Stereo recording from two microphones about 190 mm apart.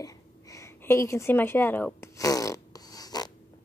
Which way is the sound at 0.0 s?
15° left (ahead or behind).